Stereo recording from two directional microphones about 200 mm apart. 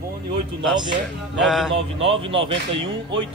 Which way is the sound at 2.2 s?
25° right (ahead or behind).